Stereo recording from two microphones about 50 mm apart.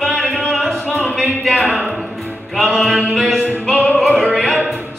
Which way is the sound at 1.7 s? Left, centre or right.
Right.